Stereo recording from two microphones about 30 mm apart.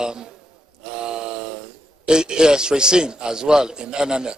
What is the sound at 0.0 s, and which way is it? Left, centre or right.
Speech, right.